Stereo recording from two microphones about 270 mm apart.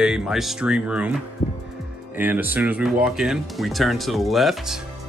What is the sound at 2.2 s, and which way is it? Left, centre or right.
Speech, centre.